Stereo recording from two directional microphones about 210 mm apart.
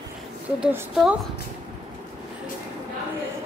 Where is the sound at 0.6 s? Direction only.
5° right (ahead or behind).